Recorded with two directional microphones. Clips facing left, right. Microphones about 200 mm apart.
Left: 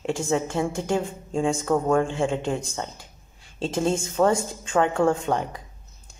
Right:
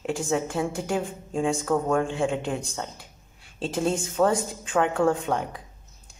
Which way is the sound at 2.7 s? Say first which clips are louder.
Left 2 dB; centre (ahead or behind).